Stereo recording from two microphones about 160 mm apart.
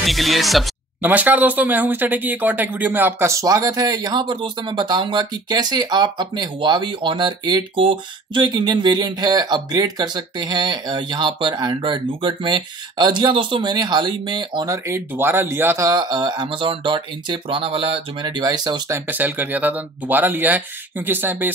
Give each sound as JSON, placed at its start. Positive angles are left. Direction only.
{"t": 0.0, "sound": "speech", "side_deg": 0}
{"t": 1.0, "sound": "speech", "side_deg": -10}
{"t": 19.0, "sound": "speech", "side_deg": -10}